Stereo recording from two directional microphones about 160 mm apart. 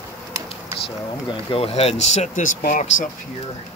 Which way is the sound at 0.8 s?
35° left (ahead or behind).